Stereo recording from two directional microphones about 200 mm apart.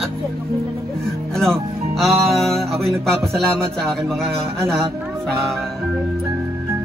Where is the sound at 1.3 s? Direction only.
Centre (ahead or behind).